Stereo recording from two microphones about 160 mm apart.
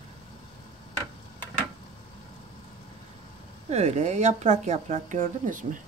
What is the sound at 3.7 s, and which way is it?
Speech, 45° right (ahead or behind).